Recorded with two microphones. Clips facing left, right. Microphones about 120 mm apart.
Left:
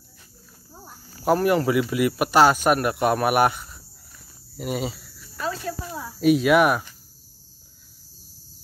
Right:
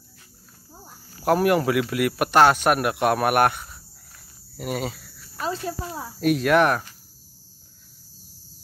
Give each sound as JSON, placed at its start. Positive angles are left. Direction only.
{"t": 1.2, "sound": "speech", "side_deg": -5}
{"t": 5.3, "sound": "cricket", "side_deg": -25}
{"t": 6.1, "sound": "speech", "side_deg": 0}